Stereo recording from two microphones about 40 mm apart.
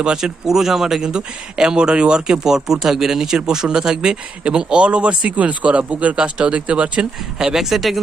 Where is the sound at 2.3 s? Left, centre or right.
Centre; by 7.0 s right.